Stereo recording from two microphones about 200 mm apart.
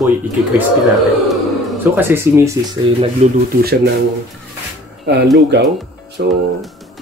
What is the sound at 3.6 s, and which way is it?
Speech, 50° right (ahead or behind).